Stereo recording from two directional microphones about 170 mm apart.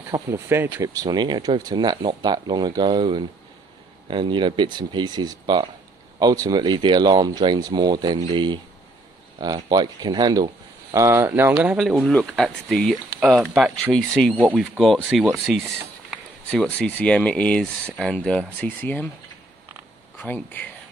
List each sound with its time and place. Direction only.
0.3 s speech: 15° right (ahead or behind); by 19.0 s 10° left (ahead or behind)
20.2 s speech: 10° left (ahead or behind)